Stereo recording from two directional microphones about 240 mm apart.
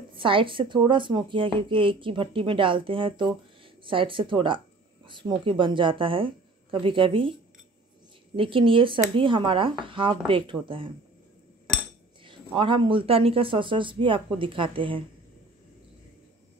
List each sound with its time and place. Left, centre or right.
0.1 s a woman's voice: right
8.4 s a woman's voice: right
12.2 s a woman's voice: right